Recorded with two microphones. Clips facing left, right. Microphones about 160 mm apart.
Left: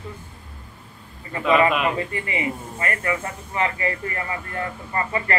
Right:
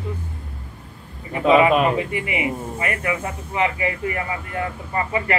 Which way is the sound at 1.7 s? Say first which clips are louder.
Right 5 dB; 35° right (ahead or behind).